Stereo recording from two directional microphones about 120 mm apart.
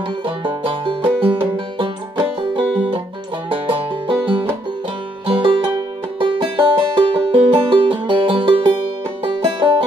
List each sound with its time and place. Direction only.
0.4 s music: 45° right (ahead or behind)